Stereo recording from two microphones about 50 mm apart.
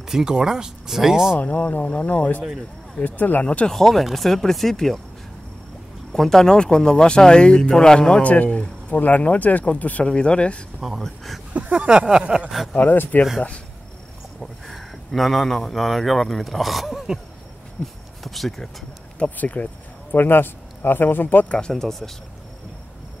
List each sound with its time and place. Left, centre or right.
0.1 s speech: centre
1.4 s speech: left
3.6 s speech: centre
6.1 s speech: centre
8.2 s speech: left
10.0 s speech: centre
10.8 s speech: centre
11.5 s speech: right
12.7 s speech: left
14.4 s speech: centre
18.2 s speech: centre
19.3 s speech: left
20.2 s speech: left
21.5 s speech: centre